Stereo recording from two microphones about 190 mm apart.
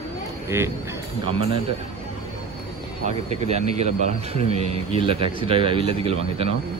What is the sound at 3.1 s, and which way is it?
Speech, 35° right (ahead or behind).